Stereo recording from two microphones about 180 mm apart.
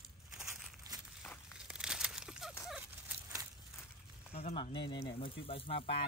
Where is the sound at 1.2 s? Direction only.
Centre (ahead or behind).